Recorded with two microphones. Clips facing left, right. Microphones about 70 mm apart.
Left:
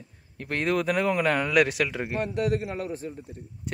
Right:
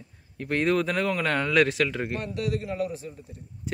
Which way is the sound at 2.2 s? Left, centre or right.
Left.